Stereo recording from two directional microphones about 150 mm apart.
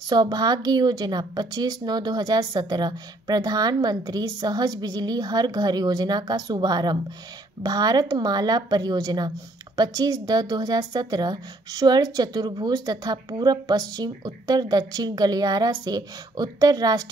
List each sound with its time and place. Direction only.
0.1 s a woman's voice: 25° right (ahead or behind)